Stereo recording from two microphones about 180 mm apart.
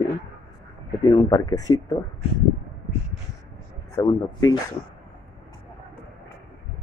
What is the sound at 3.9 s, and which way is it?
Speech, 20° left (ahead or behind).